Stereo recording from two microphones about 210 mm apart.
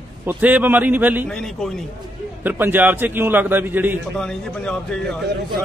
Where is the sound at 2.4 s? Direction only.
10° right (ahead or behind).